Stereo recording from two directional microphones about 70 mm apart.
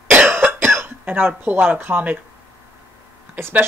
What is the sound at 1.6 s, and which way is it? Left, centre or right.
Speech, right.